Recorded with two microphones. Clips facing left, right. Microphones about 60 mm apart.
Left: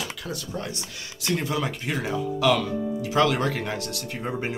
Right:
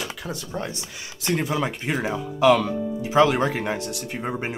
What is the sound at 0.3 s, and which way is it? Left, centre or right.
Speech, right.